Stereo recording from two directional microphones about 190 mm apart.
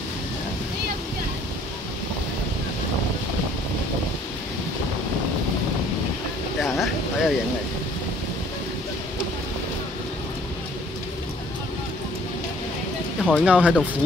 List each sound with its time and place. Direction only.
6.6 s vehicle: centre (ahead or behind)
13.2 s speech: 5° left (ahead or behind)
13.5 s speech: 5° right (ahead or behind)